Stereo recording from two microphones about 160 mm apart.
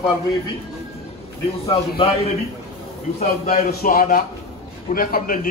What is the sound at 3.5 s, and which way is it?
A man's voice, 65° left (ahead or behind).